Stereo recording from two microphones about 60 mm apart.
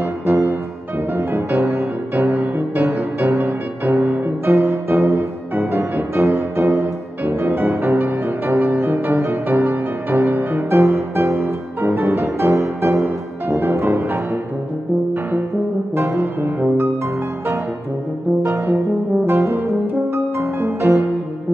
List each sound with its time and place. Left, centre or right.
1.1 s music: right
2.3 s music: right
2.9 s music: right
13.0 s music: right
19.2 s brass instrument: right
20.3 s music: right